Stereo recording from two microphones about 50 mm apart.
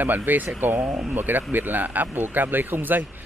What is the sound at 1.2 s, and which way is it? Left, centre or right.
Speech, right.